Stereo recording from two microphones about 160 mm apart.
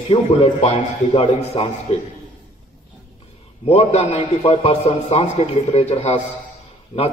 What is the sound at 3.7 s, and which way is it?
A man's voice, 40° left (ahead or behind).